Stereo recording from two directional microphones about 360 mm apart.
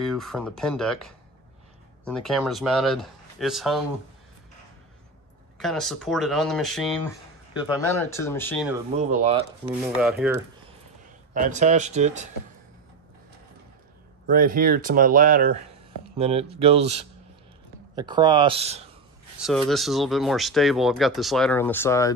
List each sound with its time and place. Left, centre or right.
0.0 s speech: centre
5.6 s speech: centre
8.2 s speech: centre
9.1 s speech: centre
9.9 s speech: centre
11.3 s speech: right
14.2 s speech: right
19.4 s speech: centre